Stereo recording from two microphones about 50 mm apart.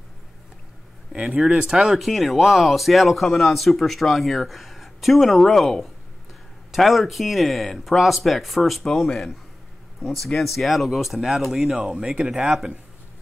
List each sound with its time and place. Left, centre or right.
1.1 s speech: centre
2.0 s speech: centre